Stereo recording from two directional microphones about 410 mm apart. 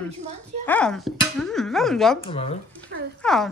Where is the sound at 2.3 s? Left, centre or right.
Centre.